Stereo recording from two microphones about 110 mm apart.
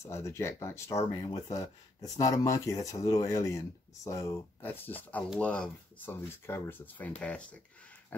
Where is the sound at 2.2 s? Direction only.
35° left (ahead or behind).